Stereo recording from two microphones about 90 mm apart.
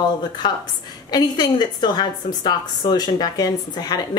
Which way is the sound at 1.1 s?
50° left (ahead or behind).